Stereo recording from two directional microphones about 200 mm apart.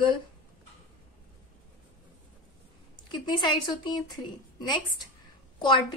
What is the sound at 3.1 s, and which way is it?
Speech, 20° left (ahead or behind).